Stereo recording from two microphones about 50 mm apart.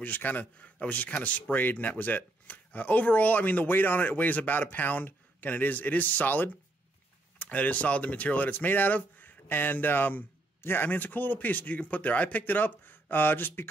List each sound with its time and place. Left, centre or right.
0.0 s speech: left